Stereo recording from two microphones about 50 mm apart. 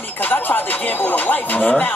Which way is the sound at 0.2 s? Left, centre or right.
Left.